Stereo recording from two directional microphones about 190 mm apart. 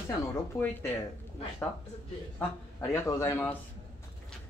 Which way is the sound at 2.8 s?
15° left (ahead or behind).